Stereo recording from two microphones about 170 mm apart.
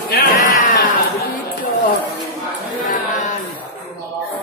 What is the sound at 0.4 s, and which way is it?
Music, 50° left (ahead or behind).